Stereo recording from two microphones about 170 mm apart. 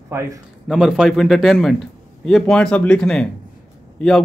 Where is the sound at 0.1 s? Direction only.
15° right (ahead or behind).